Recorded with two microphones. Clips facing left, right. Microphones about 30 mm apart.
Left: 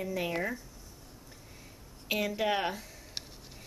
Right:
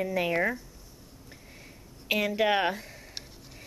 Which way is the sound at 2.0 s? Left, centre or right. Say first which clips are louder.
Right 5 dB; right.